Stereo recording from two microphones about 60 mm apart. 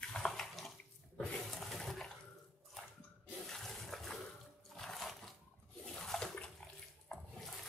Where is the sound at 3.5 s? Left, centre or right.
Centre.